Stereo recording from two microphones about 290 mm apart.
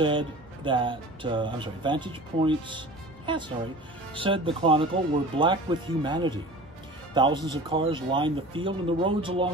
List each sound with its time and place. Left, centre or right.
0.0 s speech: centre